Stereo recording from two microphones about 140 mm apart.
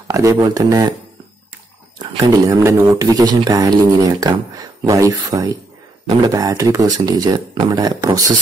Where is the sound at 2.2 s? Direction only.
25° right (ahead or behind).